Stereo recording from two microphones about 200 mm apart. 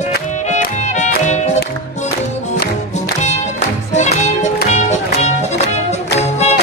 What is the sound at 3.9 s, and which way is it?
Music, 35° left (ahead or behind).